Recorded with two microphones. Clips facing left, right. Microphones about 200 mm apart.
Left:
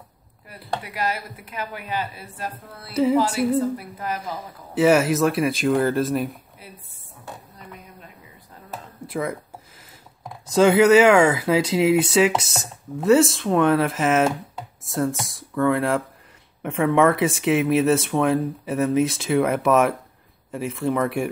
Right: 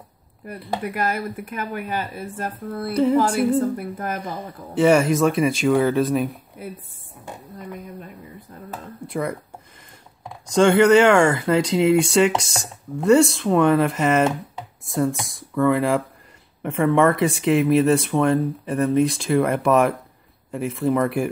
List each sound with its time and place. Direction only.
0.8 s speech: 50° right (ahead or behind)
2.9 s speech: 5° left (ahead or behind)
3.7 s speech: 50° right (ahead or behind)
4.7 s speech: 5° left (ahead or behind)
9.0 s speech: centre (ahead or behind)